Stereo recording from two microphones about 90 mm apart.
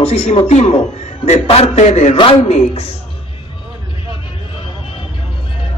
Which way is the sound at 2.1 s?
85° left.